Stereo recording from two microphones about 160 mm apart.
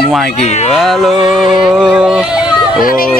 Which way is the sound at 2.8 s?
60° left (ahead or behind).